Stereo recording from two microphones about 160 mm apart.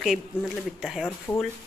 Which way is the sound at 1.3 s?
20° left (ahead or behind).